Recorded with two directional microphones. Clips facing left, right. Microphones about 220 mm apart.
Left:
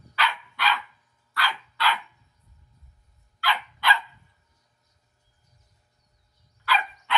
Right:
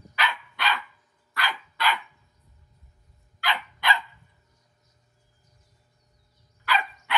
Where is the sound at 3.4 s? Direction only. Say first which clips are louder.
Left 1 dB; 15° right (ahead or behind).